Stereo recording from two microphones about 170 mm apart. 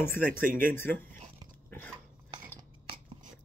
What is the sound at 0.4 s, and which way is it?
Speech, 55° right (ahead or behind).